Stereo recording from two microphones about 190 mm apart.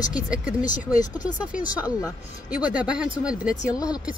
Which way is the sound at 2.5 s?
5° right (ahead or behind).